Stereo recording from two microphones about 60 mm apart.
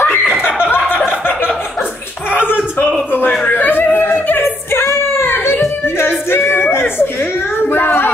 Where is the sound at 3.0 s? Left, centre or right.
Left.